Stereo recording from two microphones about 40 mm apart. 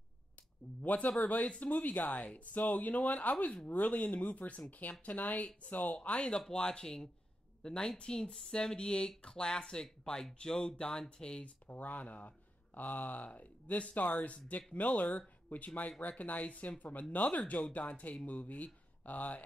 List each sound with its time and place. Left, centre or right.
0.8 s speech: left
6.5 s speech: left
11.4 s speech: left